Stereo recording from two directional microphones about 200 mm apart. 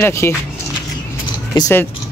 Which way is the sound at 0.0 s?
15° left (ahead or behind).